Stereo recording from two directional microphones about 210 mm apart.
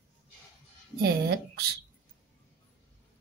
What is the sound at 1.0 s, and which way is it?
Speech, 50° right (ahead or behind).